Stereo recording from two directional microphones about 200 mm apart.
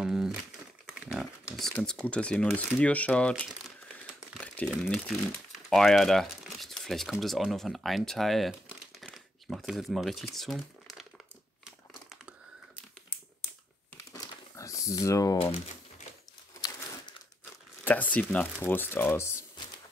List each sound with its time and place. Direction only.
0.0 s crumpling: 5° right (ahead or behind)
0.8 s speech: 5° right (ahead or behind)
4.3 s crumpling: 5° left (ahead or behind)
5.7 s speech: centre (ahead or behind)
11.6 s crumpling: 5° right (ahead or behind)
14.1 s a sound: 15° left (ahead or behind)
17.8 s speech: 10° left (ahead or behind)